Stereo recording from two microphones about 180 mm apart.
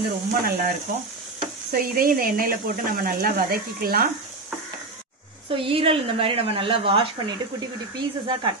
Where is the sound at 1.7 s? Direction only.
55° right (ahead or behind).